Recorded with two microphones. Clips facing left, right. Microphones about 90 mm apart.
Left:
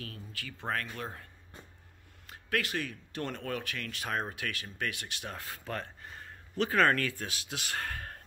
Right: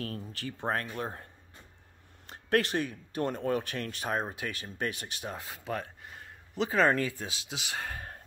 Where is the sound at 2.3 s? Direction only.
30° right (ahead or behind).